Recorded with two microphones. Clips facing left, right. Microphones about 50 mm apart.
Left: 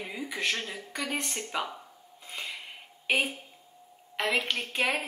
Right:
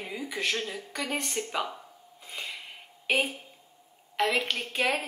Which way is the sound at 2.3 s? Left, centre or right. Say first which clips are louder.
Even; centre.